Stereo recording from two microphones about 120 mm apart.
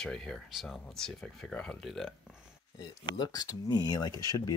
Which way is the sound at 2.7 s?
35° left (ahead or behind).